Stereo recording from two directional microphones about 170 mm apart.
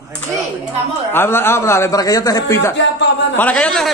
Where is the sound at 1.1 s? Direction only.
15° left (ahead or behind).